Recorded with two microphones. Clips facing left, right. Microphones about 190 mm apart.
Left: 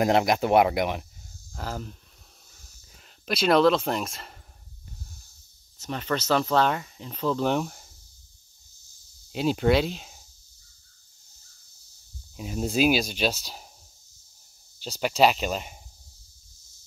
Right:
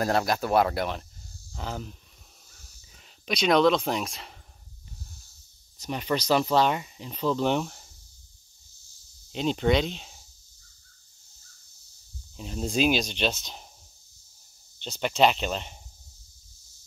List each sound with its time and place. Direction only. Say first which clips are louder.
0.0 s speech: left 4 dB; 20° left (ahead or behind)
1.5 s speech: left 1 dB; centre (ahead or behind)
3.0 s speech: left 1 dB; 5° left (ahead or behind)
5.8 s speech: right 1 dB; 10° right (ahead or behind)
7.2 s speech: even; 5° left (ahead or behind)
9.3 s speech: left 2 dB; 5° left (ahead or behind)
12.4 s speech: left 2 dB; 5° left (ahead or behind)
14.8 s speech: left 1 dB; 5° left (ahead or behind)